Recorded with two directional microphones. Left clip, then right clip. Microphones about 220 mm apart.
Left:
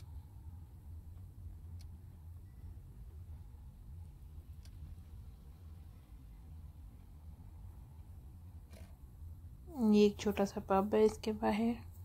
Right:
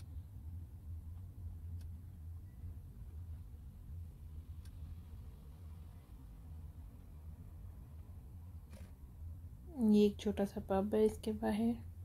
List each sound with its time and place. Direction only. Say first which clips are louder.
9.8 s speech: left 2 dB; centre (ahead or behind)